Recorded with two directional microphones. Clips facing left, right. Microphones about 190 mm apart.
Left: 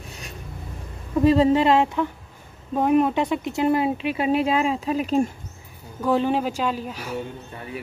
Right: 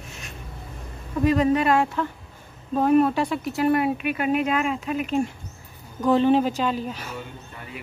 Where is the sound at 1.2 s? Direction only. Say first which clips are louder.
Left 3 dB; 25° left (ahead or behind).